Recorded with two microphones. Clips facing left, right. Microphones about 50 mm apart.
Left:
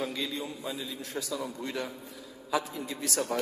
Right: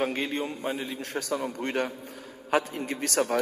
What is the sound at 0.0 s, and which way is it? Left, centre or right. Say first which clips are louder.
A man's voice: right 5 dB; right.